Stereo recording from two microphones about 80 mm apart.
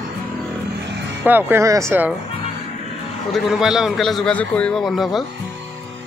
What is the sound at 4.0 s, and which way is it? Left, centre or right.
Speech, centre.